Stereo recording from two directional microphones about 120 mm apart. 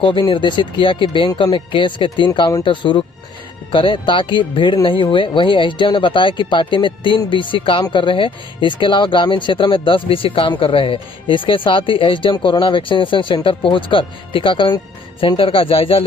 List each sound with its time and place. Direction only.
0.0 s speech: 45° left (ahead or behind)